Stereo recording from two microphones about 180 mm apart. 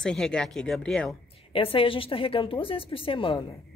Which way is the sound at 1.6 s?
30° left (ahead or behind).